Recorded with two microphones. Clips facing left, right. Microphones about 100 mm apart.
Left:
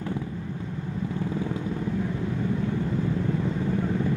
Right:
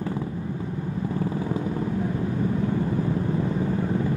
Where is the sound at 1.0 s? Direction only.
20° right (ahead or behind).